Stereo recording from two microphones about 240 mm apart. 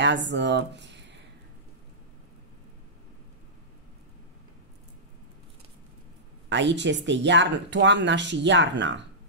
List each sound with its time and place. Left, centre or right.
0.0 s speech: right
6.5 s speech: right